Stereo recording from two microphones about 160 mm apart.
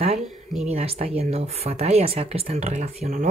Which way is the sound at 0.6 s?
40° right (ahead or behind).